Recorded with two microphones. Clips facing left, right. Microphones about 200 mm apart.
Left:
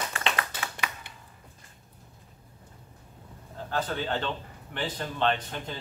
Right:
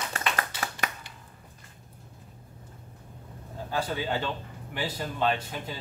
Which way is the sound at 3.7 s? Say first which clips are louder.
Even; 10° right (ahead or behind).